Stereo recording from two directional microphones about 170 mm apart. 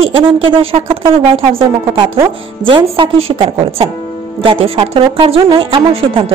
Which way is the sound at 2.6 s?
30° right (ahead or behind).